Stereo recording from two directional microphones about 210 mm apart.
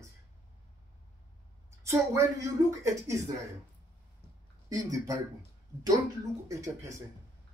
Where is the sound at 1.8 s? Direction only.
15° right (ahead or behind).